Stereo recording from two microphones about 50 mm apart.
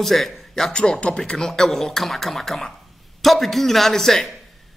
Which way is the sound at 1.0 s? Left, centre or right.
Left.